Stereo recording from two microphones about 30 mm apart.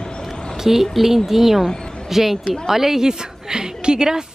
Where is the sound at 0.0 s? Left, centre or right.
Left.